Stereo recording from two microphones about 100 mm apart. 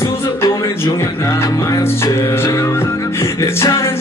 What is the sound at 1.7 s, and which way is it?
Music, 30° left (ahead or behind).